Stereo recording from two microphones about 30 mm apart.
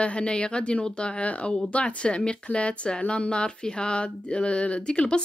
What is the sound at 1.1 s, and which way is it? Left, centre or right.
Speech, left.